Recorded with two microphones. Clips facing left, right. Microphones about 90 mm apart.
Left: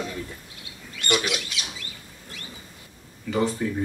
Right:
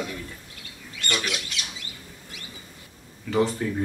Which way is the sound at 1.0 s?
10° left (ahead or behind).